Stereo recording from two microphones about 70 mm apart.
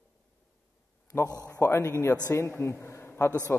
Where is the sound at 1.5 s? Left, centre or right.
Left.